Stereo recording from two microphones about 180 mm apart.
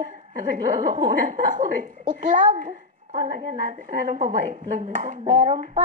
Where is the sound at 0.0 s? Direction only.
45° right (ahead or behind).